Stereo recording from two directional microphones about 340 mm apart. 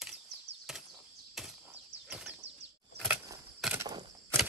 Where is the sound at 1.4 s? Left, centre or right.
Centre.